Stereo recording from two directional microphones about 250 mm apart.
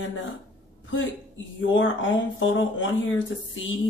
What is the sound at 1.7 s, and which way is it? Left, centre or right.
Speech, left.